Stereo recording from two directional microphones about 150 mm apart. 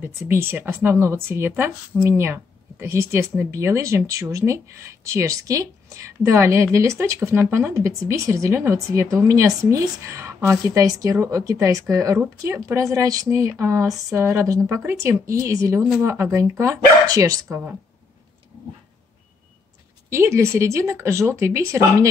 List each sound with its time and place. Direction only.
0.0 s speech: 15° right (ahead or behind)
12.2 s speech: 10° right (ahead or behind)
20.1 s speech: 20° right (ahead or behind)